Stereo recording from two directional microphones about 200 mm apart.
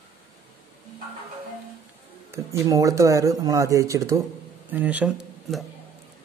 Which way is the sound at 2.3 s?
15° right (ahead or behind).